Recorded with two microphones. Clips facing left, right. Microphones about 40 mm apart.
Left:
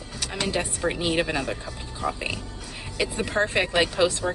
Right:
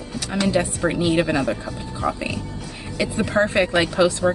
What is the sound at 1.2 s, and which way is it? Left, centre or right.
Speech, centre.